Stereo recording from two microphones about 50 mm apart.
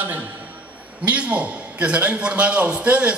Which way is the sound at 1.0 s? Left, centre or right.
Right.